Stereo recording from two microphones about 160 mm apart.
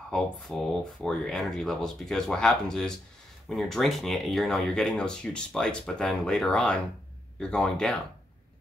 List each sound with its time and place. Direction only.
0.1 s speech: 5° left (ahead or behind)